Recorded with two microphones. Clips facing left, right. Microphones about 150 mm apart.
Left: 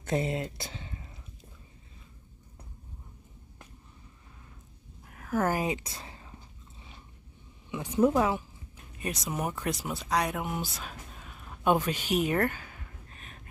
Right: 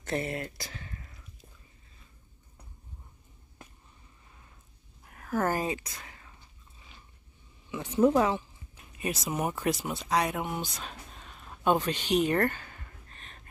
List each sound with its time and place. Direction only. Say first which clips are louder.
0.0 s speech: left 3 dB; 20° left (ahead or behind)
5.1 s speech: left 1 dB; 5° left (ahead or behind)
5.8 s a sound: left 3 dB; 30° left (ahead or behind)
7.7 s speech: right 1 dB; 10° left (ahead or behind)